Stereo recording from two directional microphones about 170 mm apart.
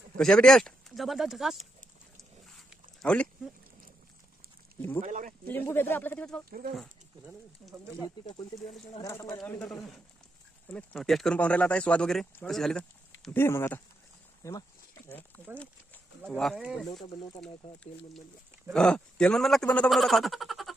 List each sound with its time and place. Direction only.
0.2 s speech: 5° left (ahead or behind)
2.7 s a sound: 5° left (ahead or behind)
5.0 s speech: 50° right (ahead or behind)
5.5 s speech: 10° left (ahead or behind)
8.2 s speech: 25° left (ahead or behind)
9.5 s speech: 5° left (ahead or behind)
18.7 s speech: 5° left (ahead or behind)